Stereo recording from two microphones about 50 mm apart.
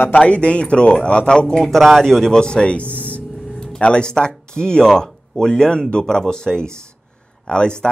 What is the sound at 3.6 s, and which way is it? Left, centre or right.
Music, centre.